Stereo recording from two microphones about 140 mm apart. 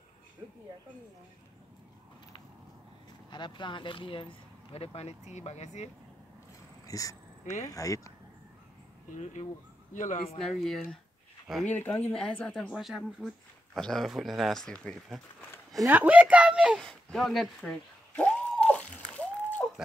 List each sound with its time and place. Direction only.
3.3 s speech: 35° left (ahead or behind); by 5.9 s 55° left (ahead or behind)
6.9 s speech: 25° left (ahead or behind)
9.2 s speech: 55° left (ahead or behind)
10.4 s speech: centre (ahead or behind)
15.9 s a sound: 10° right (ahead or behind); by 19.7 s 10° left (ahead or behind)